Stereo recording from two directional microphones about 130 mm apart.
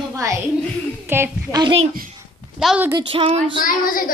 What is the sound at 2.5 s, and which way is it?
Speech, 5° right (ahead or behind).